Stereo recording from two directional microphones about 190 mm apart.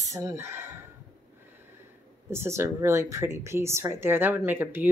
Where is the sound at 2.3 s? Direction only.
15° right (ahead or behind).